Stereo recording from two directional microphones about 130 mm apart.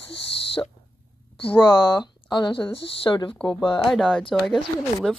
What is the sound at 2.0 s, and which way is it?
Speech, 35° left (ahead or behind).